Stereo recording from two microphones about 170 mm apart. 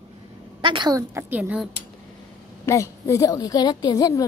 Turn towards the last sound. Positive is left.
turn(degrees=20)  # may be behind; listen again after turning